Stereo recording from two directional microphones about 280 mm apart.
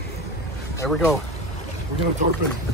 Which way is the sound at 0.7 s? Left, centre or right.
Centre.